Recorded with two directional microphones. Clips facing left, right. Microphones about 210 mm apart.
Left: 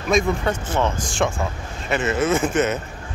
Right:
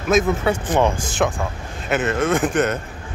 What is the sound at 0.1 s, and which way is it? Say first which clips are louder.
Speech: right 2 dB; centre (ahead or behind).